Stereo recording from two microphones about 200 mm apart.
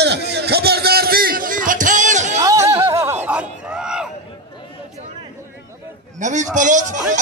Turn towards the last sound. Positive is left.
turn(degrees=-40)  # may be behind; listen again after turning